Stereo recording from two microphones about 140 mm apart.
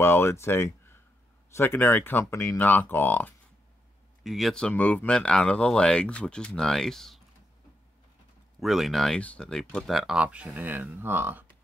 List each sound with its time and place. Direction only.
0.0 s speech: 15° left (ahead or behind)
4.2 s speech: centre (ahead or behind)
8.5 s speech: centre (ahead or behind)